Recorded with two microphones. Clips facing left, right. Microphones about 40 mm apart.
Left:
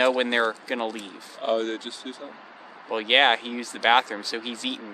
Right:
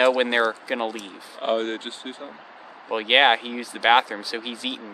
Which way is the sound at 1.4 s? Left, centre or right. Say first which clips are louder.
Right 1 dB; right.